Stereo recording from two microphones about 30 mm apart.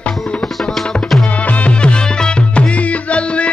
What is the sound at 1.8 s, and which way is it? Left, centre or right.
Music, left.